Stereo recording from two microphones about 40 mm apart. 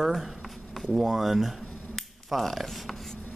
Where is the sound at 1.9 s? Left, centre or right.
Centre.